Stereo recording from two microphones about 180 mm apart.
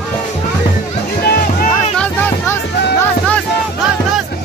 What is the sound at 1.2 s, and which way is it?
Music, 55° left (ahead or behind).